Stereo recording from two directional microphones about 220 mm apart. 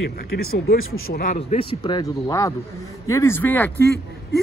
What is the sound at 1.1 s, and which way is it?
Speech, 35° left (ahead or behind).